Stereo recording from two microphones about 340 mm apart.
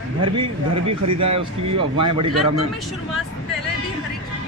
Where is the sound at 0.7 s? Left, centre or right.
Right.